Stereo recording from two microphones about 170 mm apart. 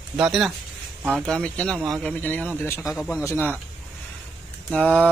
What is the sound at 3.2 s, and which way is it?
Speech, 10° left (ahead or behind).